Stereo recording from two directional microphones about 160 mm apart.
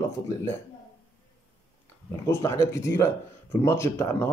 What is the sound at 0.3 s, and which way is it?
Speech, 15° left (ahead or behind).